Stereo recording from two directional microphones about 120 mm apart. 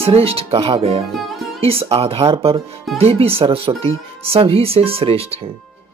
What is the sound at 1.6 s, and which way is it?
Speech, 55° right (ahead or behind).